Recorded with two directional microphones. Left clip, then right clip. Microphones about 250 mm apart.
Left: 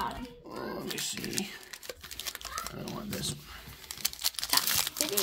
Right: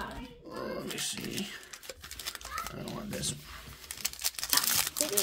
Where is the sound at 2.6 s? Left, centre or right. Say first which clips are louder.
Even; centre.